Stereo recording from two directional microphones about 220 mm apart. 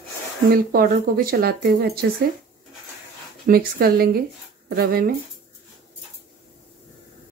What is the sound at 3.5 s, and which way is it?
Speech, 40° right (ahead or behind).